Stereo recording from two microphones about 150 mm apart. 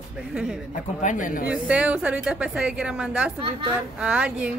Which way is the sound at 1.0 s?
60° left (ahead or behind).